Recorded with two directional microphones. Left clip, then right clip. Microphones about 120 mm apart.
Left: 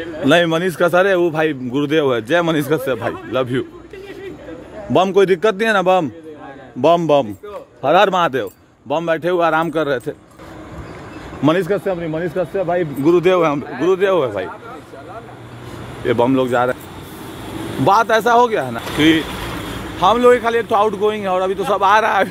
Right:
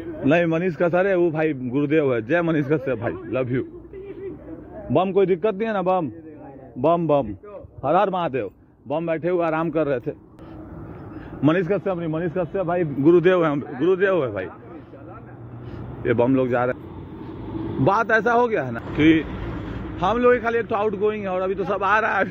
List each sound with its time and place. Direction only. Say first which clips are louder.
0.3 s a man's voice: left 6 dB; 35° left (ahead or behind)
3.3 s a man's voice: left 5 dB; 40° left (ahead or behind)
4.9 s a man's voice: left 6 dB; 70° left (ahead or behind)
6.8 s a man's voice: left 6 dB; 65° left (ahead or behind)
7.8 s speech: left 7 dB; 80° left
8.3 s a man's voice: left 5 dB; 45° left (ahead or behind)
11.4 s a man's voice: left 4 dB; 40° left (ahead or behind)
16.0 s a man's voice: left 4 dB; 35° left (ahead or behind)
17.8 s speech: left 6 dB; 25° left (ahead or behind)
18.9 s a man's voice: left 3 dB; 45° left (ahead or behind)
19.2 s vehicle: left 7 dB; 15° left (ahead or behind)
20.0 s a man's voice: left 7 dB; 45° left (ahead or behind)